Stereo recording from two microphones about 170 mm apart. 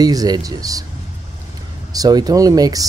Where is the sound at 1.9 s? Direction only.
20° right (ahead or behind).